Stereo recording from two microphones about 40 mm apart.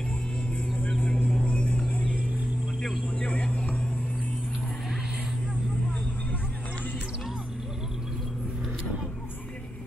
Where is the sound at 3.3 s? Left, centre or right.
Left.